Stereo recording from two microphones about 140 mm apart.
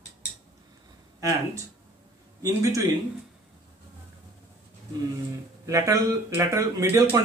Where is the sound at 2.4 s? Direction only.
25° right (ahead or behind).